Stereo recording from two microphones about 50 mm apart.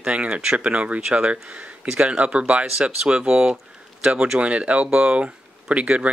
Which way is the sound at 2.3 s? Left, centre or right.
Right.